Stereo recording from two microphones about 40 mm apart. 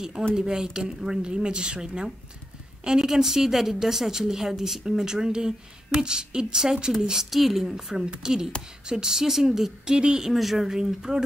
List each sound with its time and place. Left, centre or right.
0.4 s a woman's voice: centre
10.3 s a woman's voice: centre